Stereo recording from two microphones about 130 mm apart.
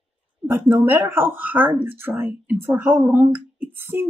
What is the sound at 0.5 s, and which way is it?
Speech, 15° right (ahead or behind).